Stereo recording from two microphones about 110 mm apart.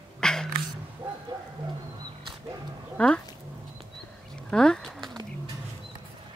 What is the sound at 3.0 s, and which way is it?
Speech, 10° left (ahead or behind).